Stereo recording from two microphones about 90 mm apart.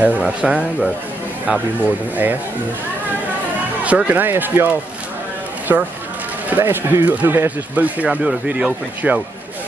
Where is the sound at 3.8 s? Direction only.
15° right (ahead or behind).